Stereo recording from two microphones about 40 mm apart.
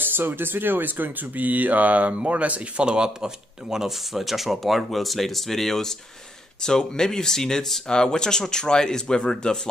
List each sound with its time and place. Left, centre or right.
0.0 s speech: right
2.8 s speech: right
3.7 s speech: centre